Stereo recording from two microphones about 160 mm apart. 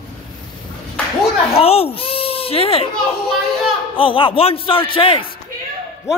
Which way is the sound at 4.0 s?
30° left (ahead or behind).